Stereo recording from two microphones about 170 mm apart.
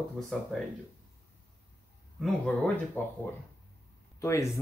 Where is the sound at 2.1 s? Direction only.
5° left (ahead or behind).